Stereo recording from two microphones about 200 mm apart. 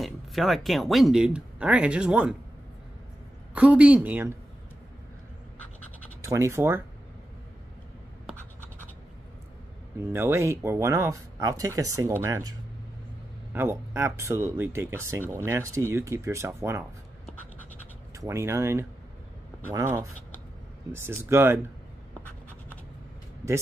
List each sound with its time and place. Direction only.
0.0 s speech: centre (ahead or behind)
3.5 s speech: 5° right (ahead or behind)
6.2 s speech: 15° right (ahead or behind)
10.1 s speech: 15° right (ahead or behind)
18.1 s speech: 15° right (ahead or behind)